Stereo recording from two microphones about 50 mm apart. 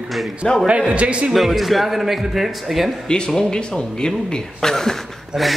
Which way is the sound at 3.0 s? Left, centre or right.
Centre.